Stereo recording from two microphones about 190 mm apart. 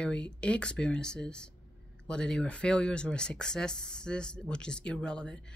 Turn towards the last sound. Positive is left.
turn(degrees=5)  # may be behind; listen again after turning